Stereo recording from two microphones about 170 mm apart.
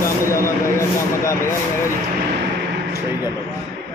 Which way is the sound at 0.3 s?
15° left (ahead or behind).